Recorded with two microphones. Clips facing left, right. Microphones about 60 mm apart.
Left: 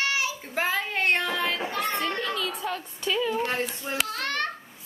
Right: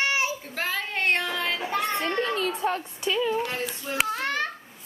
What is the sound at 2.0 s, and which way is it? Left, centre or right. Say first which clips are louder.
Speech: right 2 dB; right.